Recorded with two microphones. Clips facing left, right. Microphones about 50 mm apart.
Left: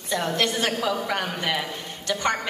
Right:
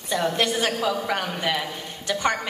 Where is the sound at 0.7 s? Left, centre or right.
Centre.